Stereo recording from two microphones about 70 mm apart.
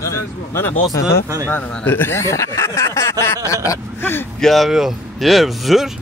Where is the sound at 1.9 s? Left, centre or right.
Left.